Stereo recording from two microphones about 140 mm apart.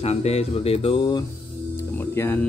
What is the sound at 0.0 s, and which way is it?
Speech, 45° left (ahead or behind).